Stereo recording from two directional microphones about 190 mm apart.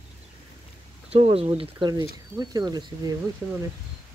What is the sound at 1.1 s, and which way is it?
Speech, 30° right (ahead or behind).